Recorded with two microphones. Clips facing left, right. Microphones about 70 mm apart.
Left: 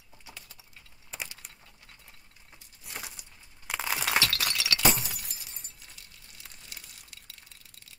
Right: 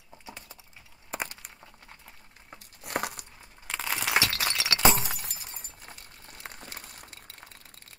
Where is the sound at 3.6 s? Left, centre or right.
Centre.